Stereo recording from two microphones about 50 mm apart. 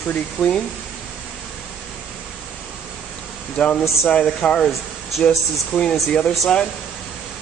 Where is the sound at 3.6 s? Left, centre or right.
Left.